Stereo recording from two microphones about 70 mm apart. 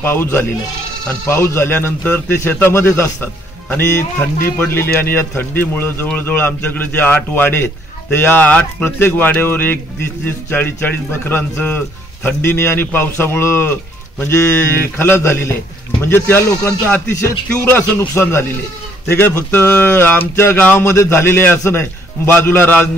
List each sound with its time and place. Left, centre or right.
0.0 s a man's voice: left
8.4 s a man's voice: centre; by 15.5 s left
17.6 s a man's voice: left
20.5 s a man's voice: left
20.8 s a man's voice: left